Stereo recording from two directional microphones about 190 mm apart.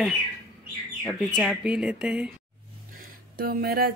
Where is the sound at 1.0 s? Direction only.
Centre (ahead or behind).